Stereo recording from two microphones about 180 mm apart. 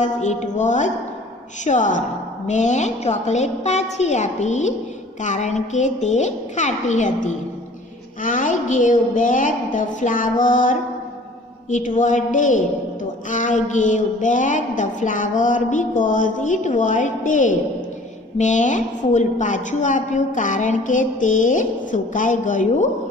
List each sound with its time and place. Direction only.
0.0 s a woman's voice: 40° left (ahead or behind)